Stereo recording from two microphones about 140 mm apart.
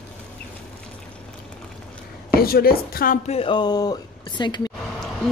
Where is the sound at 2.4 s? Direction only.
90° left.